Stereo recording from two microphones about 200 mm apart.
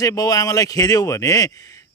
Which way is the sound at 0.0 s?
15° left (ahead or behind).